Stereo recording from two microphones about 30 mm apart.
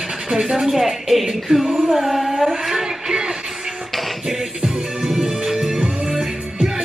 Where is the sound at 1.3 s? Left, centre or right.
Centre.